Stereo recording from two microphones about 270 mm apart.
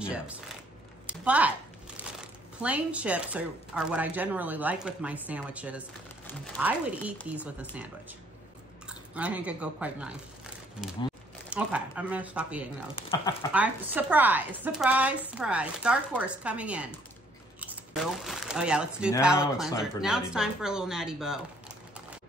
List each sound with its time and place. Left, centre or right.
0.1 s speech: centre
2.6 s speech: centre
8.8 s speech: centre
11.5 s speech: centre
12.9 s speech: centre
13.5 s speech: centre
19.3 s speech: centre
19.8 s speech: centre